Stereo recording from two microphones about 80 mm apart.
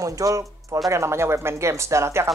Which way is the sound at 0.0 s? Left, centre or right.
Right.